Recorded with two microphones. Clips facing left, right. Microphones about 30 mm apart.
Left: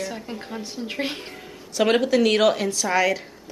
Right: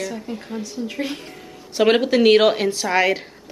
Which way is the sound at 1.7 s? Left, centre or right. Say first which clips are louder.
Right 3 dB; right.